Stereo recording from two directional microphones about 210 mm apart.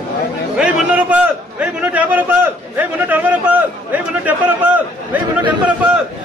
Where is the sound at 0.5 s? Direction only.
5° right (ahead or behind).